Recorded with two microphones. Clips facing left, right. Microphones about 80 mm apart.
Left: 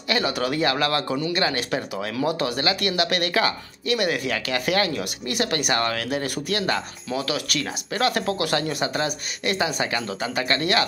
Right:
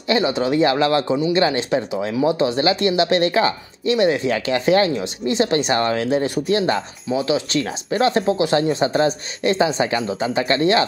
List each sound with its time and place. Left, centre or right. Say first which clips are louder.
0.1 s speech: right 6 dB; right